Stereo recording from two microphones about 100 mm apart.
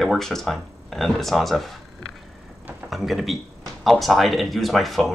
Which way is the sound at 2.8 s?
Centre (ahead or behind).